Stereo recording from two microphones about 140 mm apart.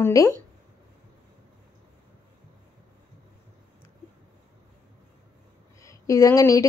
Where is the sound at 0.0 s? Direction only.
25° left (ahead or behind).